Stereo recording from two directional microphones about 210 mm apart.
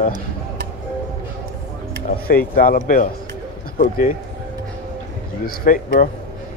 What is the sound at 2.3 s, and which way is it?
Speech, 40° left (ahead or behind).